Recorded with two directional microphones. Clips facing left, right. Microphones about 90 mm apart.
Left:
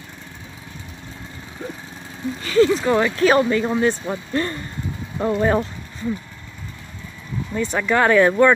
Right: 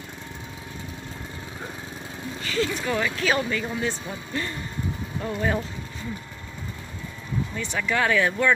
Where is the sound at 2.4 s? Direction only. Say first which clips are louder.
Left 10 dB; 30° left (ahead or behind).